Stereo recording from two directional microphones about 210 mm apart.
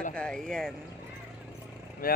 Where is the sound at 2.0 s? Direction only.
45° left (ahead or behind).